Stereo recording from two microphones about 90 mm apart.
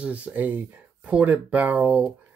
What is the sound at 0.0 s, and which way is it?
Speech, 15° right (ahead or behind).